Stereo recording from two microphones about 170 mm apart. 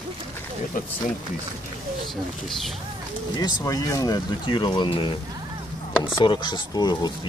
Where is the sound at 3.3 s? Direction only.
25° left (ahead or behind).